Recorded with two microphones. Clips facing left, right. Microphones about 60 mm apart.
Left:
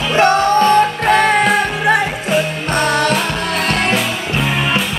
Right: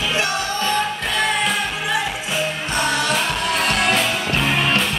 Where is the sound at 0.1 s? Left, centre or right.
Left.